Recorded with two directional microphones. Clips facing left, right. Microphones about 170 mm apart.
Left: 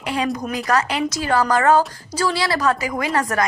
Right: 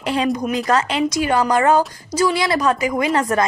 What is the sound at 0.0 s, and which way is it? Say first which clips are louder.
A woman's voice: right 3 dB; 25° right (ahead or behind).